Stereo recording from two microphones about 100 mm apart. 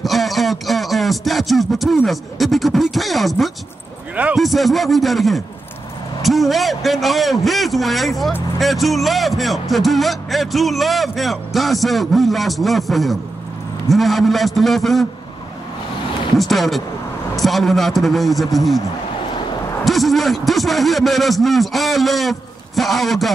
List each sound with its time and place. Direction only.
0.0 s a sound: centre (ahead or behind)
2.0 s speech: centre (ahead or behind)
4.1 s speech: 15° right (ahead or behind)
4.4 s speech: centre (ahead or behind)
16.3 s speech: centre (ahead or behind)
19.8 s a man's voice: centre (ahead or behind)